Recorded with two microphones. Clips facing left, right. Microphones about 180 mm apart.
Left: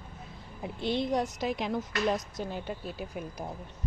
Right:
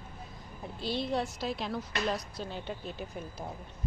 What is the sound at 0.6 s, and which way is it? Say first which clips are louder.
A woman's voice: left 4 dB; 20° left (ahead or behind).